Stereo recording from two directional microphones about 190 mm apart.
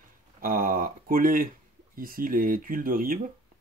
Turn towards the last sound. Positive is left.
turn(degrees=-50)  # may be behind; listen again after turning